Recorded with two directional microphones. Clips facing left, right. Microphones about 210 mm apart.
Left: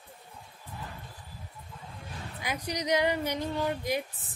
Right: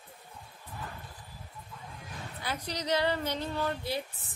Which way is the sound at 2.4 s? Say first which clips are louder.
Left 3 dB; 15° left (ahead or behind).